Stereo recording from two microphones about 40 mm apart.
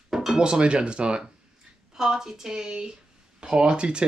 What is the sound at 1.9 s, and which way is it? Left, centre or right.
A woman's voice, centre.